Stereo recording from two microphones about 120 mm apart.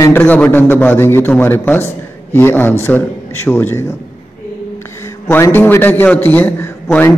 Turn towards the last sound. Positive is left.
turn(degrees=15)  # may be behind; listen again after turning